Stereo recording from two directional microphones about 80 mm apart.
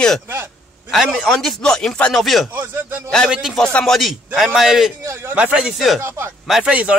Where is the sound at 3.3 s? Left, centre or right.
Centre.